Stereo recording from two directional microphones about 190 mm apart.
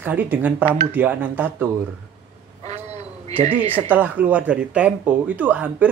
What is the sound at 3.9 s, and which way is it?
Speech, 10° right (ahead or behind).